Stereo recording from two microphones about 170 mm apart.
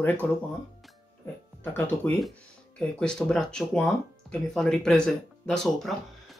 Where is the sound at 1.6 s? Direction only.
15° left (ahead or behind).